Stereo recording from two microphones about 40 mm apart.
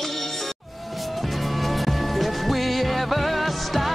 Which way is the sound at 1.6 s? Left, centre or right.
Centre.